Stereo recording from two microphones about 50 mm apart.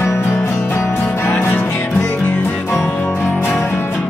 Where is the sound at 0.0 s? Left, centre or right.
Left.